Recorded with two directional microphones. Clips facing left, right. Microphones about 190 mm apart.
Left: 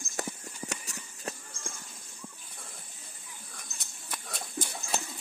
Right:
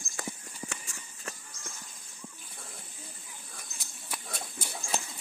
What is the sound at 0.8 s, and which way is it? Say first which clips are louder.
Livestock: left 4 dB; 35° left (ahead or behind).